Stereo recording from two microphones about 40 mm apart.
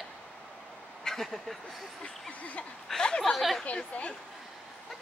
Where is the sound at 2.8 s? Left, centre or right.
Centre.